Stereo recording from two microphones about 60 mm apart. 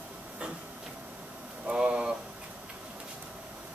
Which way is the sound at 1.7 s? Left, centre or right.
Centre.